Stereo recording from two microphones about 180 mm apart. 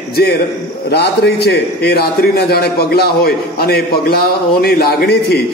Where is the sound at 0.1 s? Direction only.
60° left (ahead or behind).